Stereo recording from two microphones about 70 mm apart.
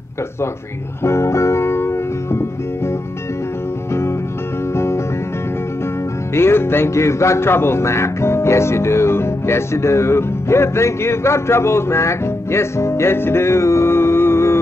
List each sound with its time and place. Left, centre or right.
1.0 s music: left
4.7 s music: left
6.3 s music: left